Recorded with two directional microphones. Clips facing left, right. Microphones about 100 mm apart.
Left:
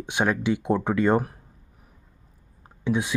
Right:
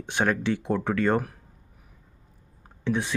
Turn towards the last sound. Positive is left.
turn(degrees=15)  # may be behind; listen again after turning